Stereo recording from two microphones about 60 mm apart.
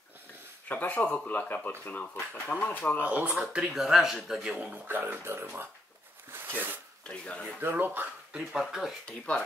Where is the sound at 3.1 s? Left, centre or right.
Right.